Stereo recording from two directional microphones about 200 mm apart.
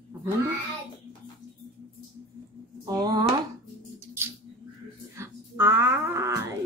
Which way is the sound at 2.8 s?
20° right (ahead or behind).